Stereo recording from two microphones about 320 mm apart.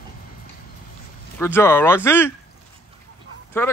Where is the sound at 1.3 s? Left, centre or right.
Centre.